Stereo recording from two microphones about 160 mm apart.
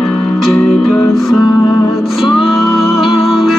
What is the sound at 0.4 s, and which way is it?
Music, centre (ahead or behind).